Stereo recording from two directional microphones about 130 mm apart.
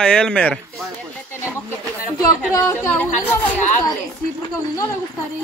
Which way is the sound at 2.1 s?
25° left (ahead or behind).